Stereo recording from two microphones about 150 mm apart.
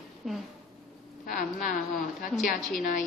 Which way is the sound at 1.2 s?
65° left (ahead or behind).